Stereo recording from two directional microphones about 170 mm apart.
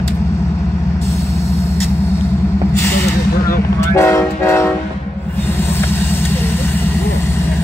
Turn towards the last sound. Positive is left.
turn(degrees=15)  # may be behind; listen again after turning